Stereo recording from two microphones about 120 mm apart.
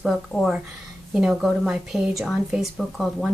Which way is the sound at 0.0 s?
5° left (ahead or behind).